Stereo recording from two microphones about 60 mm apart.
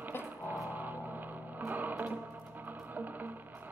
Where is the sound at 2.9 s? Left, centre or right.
Right.